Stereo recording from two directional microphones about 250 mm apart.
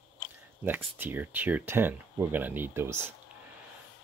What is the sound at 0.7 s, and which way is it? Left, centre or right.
Speech, centre.